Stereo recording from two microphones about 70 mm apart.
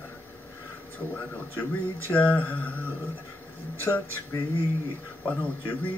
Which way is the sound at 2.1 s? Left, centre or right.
Left.